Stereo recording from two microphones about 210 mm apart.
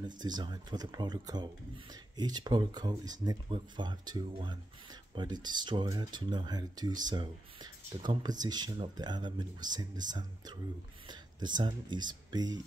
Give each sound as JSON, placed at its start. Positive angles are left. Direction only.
{"t": 0.0, "sound": "speech", "side_deg": -20}
{"t": 8.0, "sound": "speech", "side_deg": -20}